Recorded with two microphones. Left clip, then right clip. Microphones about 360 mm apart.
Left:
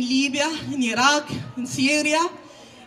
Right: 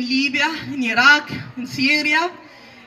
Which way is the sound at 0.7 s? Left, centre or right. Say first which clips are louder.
Right 7 dB; centre.